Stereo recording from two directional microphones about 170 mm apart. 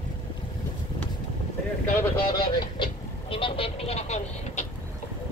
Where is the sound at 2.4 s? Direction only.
30° left (ahead or behind).